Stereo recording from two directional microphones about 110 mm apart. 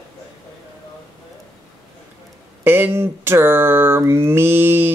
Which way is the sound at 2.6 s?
20° right (ahead or behind).